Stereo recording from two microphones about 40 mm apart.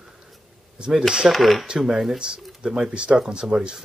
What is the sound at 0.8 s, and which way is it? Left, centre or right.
Speech, right.